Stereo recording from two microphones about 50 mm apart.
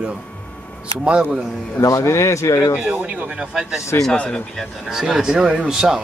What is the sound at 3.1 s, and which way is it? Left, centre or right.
Speech, right.